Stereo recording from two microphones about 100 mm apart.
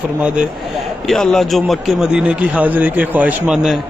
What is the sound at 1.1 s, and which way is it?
Speech, centre (ahead or behind).